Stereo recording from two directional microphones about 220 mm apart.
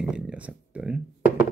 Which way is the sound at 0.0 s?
5° right (ahead or behind).